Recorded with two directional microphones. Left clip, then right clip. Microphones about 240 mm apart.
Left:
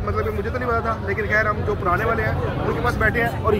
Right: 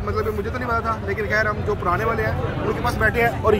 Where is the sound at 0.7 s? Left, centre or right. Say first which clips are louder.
Even; centre.